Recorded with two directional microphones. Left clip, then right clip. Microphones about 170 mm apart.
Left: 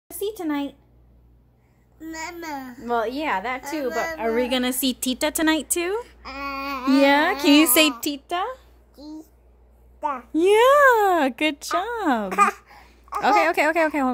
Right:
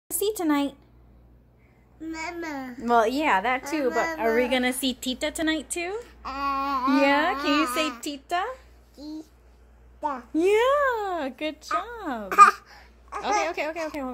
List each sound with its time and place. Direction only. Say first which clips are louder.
0.1 s speech: right 2 dB; 15° right (ahead or behind)
2.0 s a child's voice: even; 5° left (ahead or behind)
2.8 s a woman's voice: right 3 dB; 15° right (ahead or behind)
4.4 s speech: left 1 dB; 30° left (ahead or behind); by 5.9 s 50° left (ahead or behind)
6.2 s a sound: right 3 dB; 10° left (ahead or behind)
7.1 s speech: left 6 dB; 60° left (ahead or behind)
7.4 s speech: left 7 dB; 75° left (ahead or behind)
8.0 s speech: left 2 dB; 50° left (ahead or behind)
9.0 s a sound: right 1 dB; 55° left (ahead or behind)
9.9 s a child's voice: left 3 dB; 15° left (ahead or behind)
10.3 s speech: left 6 dB; 50° left (ahead or behind); by 12.3 s 70° left (ahead or behind)
12.3 s laughter: right 10 dB; 15° left (ahead or behind)
13.2 s speech: left 8 dB; 60° left (ahead or behind)